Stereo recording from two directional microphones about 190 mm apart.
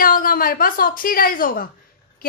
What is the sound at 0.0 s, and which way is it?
A woman's voice, 50° left (ahead or behind).